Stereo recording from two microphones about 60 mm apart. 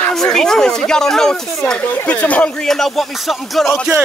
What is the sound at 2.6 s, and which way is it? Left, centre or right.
Speech, centre.